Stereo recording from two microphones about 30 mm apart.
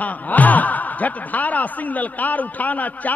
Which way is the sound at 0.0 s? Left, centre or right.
Left.